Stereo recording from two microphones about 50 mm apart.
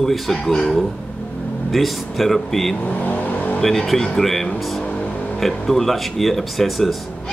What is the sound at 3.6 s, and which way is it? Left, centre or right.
Speech, centre.